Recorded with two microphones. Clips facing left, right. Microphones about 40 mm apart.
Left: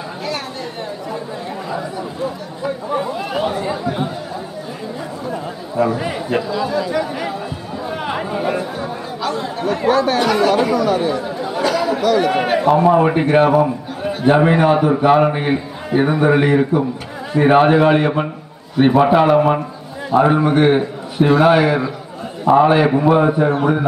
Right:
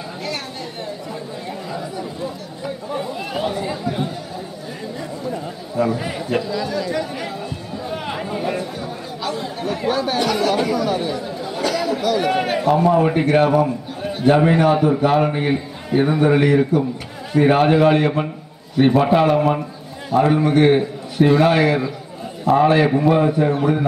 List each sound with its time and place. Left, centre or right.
1.7 s chatter: centre
2.6 s a man's voice: centre
5.3 s a man's voice: centre
8.1 s chatter: centre
9.2 s a man's voice: centre